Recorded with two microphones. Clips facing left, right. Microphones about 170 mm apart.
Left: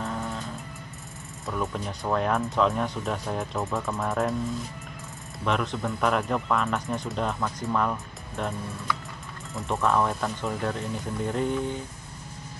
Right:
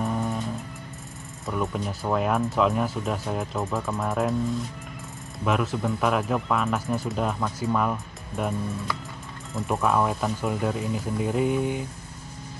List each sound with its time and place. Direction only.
0.0 s music: 15° right (ahead or behind)
1.4 s speech: centre (ahead or behind)
5.4 s speech: 5° right (ahead or behind)